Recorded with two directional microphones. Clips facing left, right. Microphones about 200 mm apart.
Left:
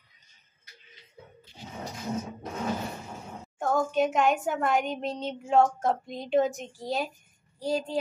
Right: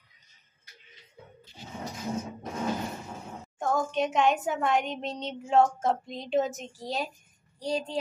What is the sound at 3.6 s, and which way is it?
A woman's voice, 5° left (ahead or behind).